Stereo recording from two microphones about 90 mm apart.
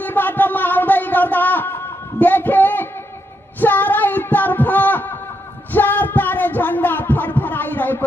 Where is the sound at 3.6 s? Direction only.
20° left (ahead or behind).